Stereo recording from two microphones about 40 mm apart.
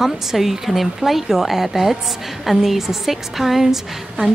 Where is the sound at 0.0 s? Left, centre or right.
Centre.